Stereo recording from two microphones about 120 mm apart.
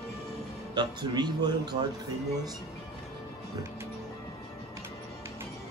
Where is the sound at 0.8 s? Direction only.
35° right (ahead or behind).